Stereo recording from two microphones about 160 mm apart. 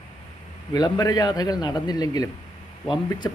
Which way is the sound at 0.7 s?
25° left (ahead or behind).